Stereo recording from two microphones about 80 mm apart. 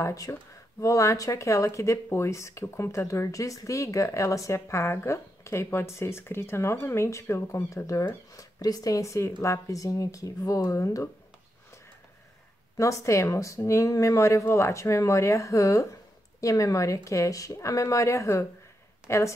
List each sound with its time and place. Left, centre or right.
0.0 s speech: left
12.7 s speech: left